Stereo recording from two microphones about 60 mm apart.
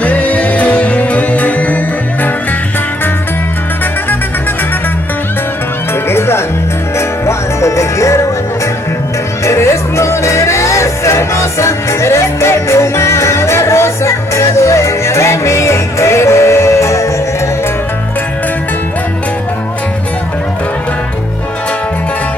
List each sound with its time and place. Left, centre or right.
0.0 s music: left
6.0 s music: left
9.4 s music: left